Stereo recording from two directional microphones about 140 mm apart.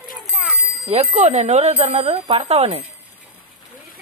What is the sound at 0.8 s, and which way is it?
Speech, 50° right (ahead or behind).